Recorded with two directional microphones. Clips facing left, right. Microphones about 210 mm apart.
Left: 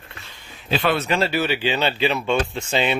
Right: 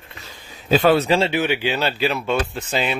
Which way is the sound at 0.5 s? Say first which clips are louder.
Right 6 dB; 40° right (ahead or behind).